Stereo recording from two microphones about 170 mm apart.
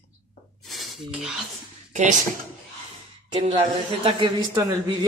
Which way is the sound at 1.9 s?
45° right (ahead or behind).